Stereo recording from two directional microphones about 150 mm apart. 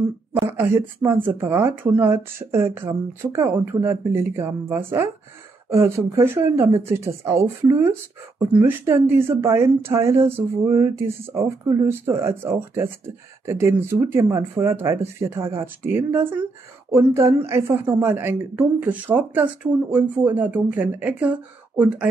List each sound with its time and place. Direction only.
0.5 s speech: 15° right (ahead or behind)
17.5 s speech: 20° right (ahead or behind)